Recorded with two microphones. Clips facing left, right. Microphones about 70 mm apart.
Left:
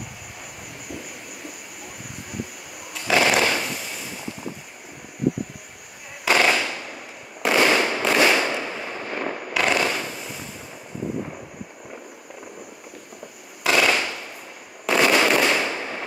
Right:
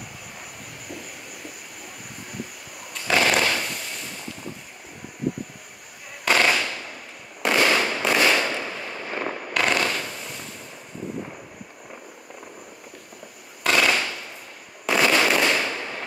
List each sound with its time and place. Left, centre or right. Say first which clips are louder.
2.9 s a sound: left 1 dB; centre
6.2 s fireworks: left 1 dB; centre
13.7 s firecracker: left 1 dB; centre
14.9 s fireworks: left 2 dB; centre